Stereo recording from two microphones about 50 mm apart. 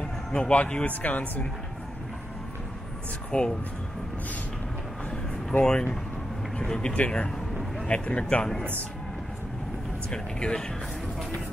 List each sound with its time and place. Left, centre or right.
0.3 s speech: left
3.3 s speech: centre
5.6 s speech: centre
10.1 s speech: centre